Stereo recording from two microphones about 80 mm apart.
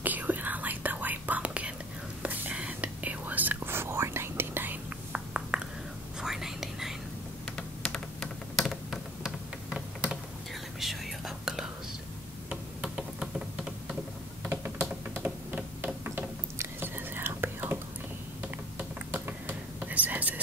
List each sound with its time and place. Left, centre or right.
0.0 s whispering: right; by 7.0 s centre
7.5 s a sound: centre
9.2 s typing: centre
10.8 s whispering: centre
12.4 s a sound: centre
14.5 s typing: right
18.4 s computer keyboard: right